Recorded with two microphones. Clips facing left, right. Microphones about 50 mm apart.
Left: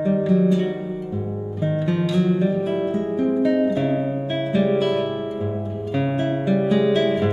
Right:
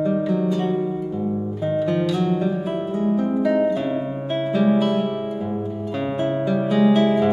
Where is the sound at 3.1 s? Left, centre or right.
Centre.